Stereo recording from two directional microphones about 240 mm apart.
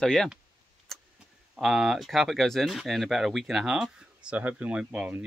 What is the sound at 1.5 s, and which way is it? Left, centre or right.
Speech, centre.